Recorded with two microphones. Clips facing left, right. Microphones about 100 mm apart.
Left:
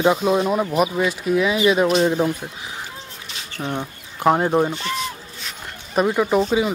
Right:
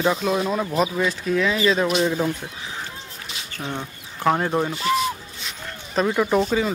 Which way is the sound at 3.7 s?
15° left (ahead or behind).